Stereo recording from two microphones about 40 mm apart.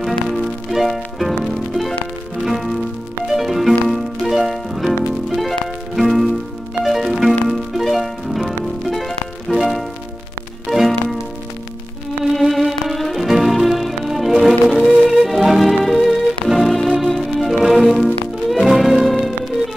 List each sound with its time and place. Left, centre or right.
0.0 s music: centre
12.4 s music: centre